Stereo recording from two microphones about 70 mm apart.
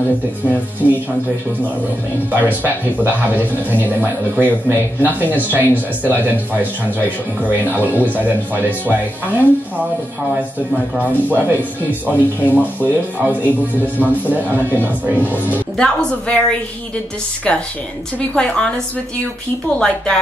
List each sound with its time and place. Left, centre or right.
0.8 s speech: right
2.3 s speech: right
3.8 s speech: right
11.0 s speech: right
12.1 s speech: left
12.8 s speech: right
15.8 s a woman's voice: centre